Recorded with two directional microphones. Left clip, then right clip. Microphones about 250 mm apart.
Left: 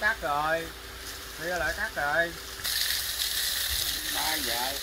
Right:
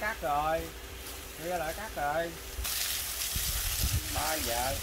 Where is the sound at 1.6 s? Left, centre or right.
Centre.